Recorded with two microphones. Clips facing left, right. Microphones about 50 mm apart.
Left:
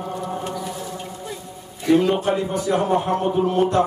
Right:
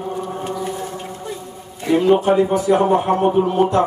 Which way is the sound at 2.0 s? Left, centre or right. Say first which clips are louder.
Right 10 dB; right.